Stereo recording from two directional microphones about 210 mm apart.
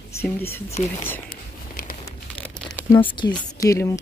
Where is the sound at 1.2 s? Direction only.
40° left (ahead or behind).